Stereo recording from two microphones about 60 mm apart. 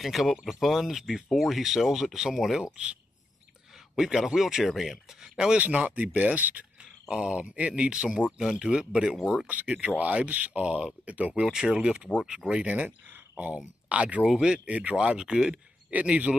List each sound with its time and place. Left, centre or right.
0.0 s speech: centre
3.9 s speech: centre
5.6 s speech: right
7.1 s speech: centre
9.5 s speech: right
12.7 s speech: right; by 15.6 s centre
15.9 s speech: right